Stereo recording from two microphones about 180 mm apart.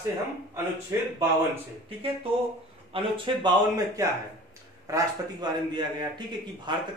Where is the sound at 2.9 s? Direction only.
25° right (ahead or behind).